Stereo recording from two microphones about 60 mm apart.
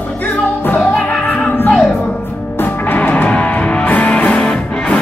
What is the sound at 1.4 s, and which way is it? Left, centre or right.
Music, left.